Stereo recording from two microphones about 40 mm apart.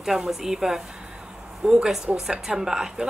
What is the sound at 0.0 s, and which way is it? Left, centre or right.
Speech, centre.